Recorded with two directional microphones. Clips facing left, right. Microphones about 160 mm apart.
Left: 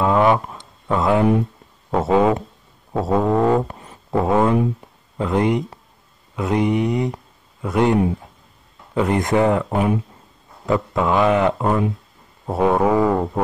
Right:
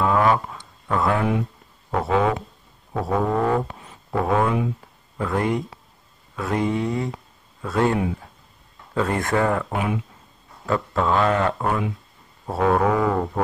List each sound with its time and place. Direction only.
0.0 s a sound: 20° left (ahead or behind)
1.9 s mantra: 25° left (ahead or behind)
7.6 s speech: 20° left (ahead or behind)
9.7 s speech: 35° left (ahead or behind)
10.7 s speech: 15° left (ahead or behind)
12.4 s mantra: 20° left (ahead or behind)
13.0 s speech: 15° left (ahead or behind)